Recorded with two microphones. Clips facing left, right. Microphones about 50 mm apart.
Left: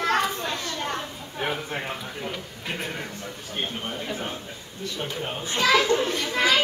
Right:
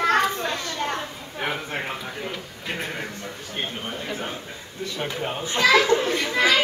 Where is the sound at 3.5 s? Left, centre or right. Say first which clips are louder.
Even; centre.